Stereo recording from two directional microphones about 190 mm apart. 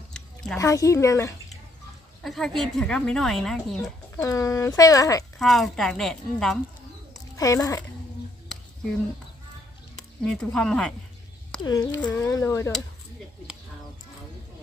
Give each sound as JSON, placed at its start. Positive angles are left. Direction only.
{"t": 0.6, "sound": "speech", "side_deg": 15}
{"t": 2.2, "sound": "speech", "side_deg": 0}
{"t": 4.2, "sound": "speech", "side_deg": 15}
{"t": 5.4, "sound": "speech", "side_deg": 0}
{"t": 7.3, "sound": "speech", "side_deg": 15}
{"t": 9.9, "sound": "speech", "side_deg": 5}
{"t": 11.6, "sound": "speech", "side_deg": 20}